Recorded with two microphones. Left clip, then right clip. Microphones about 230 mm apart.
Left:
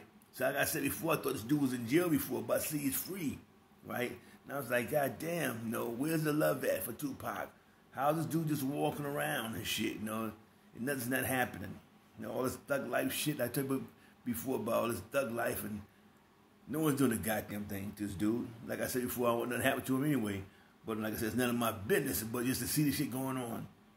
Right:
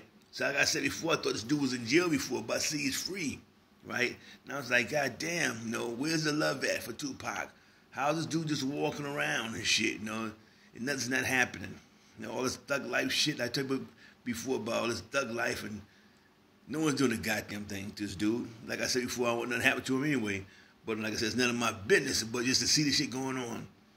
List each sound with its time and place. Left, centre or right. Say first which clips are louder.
0.4 s speech: right 4 dB; centre
16.7 s speech: right 2 dB; centre
23.2 s speech: right 3 dB; centre